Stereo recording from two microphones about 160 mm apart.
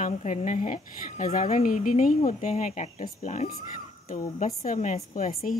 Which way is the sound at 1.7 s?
60° left (ahead or behind).